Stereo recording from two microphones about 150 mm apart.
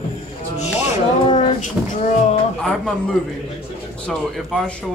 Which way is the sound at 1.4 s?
50° left (ahead or behind).